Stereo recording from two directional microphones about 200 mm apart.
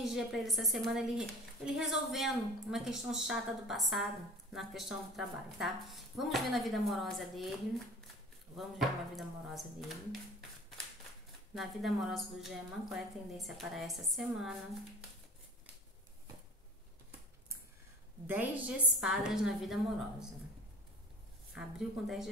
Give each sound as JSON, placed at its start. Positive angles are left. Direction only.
{"t": 0.0, "sound": "a woman's voice", "side_deg": 0}
{"t": 8.5, "sound": "a woman's voice", "side_deg": 0}
{"t": 11.5, "sound": "a woman's voice", "side_deg": 0}
{"t": 18.2, "sound": "a woman's voice", "side_deg": -10}
{"t": 21.5, "sound": "a woman's voice", "side_deg": 0}